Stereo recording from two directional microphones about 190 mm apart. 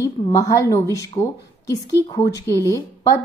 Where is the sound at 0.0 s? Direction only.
15° left (ahead or behind).